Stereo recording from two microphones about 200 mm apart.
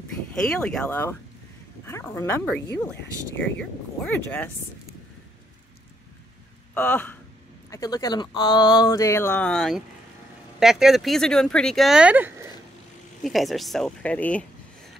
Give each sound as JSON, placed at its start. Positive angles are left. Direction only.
{"t": 0.3, "sound": "speech", "side_deg": 5}
{"t": 3.0, "sound": "speech", "side_deg": 65}
{"t": 4.0, "sound": "speech", "side_deg": 10}
{"t": 6.7, "sound": "speech", "side_deg": 10}